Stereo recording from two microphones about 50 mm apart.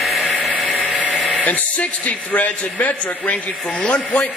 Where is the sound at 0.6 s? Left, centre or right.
Left.